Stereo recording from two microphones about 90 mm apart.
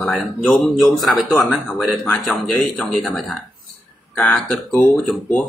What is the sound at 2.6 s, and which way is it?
Speech, 10° left (ahead or behind).